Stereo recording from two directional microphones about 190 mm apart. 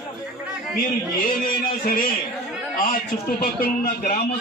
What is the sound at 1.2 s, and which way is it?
A man's voice, 50° left (ahead or behind).